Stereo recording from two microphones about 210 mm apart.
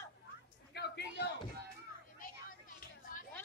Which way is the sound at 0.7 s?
50° left (ahead or behind).